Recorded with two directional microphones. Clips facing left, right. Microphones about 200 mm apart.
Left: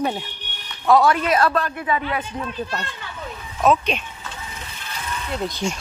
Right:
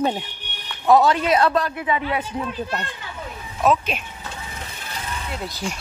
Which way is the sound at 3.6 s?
5° right (ahead or behind).